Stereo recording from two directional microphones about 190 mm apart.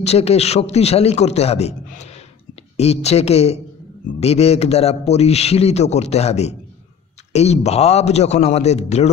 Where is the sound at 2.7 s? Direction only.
35° left (ahead or behind).